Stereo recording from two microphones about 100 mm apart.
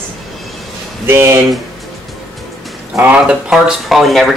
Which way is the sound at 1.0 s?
25° right (ahead or behind).